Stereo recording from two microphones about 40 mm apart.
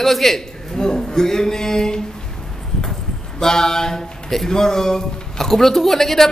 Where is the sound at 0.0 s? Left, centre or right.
Centre.